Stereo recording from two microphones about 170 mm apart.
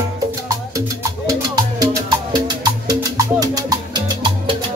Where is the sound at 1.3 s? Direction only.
20° right (ahead or behind).